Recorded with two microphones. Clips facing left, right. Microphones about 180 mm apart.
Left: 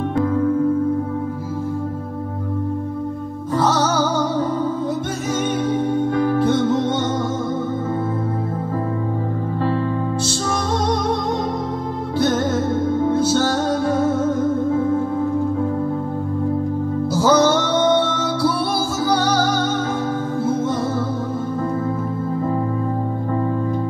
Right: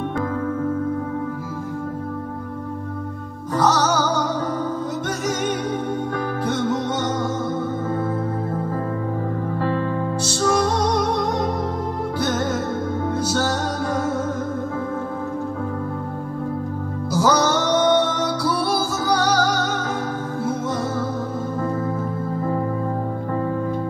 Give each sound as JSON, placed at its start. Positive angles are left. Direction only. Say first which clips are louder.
{"t": 5.7, "sound": "music", "louder": "left 5 dB", "side_deg": 25}
{"t": 17.2, "sound": "music", "louder": "left 3 dB", "side_deg": 25}